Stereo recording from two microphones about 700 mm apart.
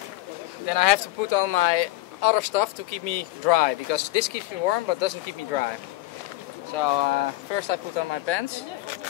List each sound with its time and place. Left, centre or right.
0.7 s speech: left
6.7 s speech: left